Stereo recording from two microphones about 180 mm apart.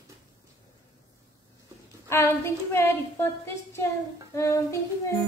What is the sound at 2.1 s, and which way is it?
A woman's voice, 15° left (ahead or behind).